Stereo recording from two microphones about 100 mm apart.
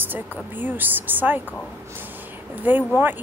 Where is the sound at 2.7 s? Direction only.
20° right (ahead or behind).